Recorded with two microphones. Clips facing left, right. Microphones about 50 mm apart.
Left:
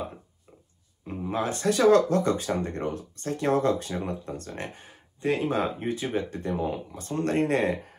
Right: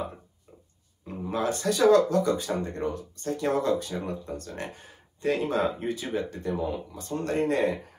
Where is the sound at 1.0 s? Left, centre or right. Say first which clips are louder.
Even; left.